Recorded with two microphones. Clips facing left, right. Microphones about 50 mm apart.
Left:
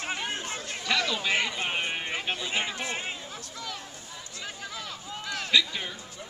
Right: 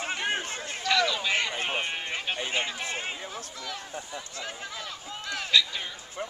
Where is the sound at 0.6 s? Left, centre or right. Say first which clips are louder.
Right 1 dB; centre.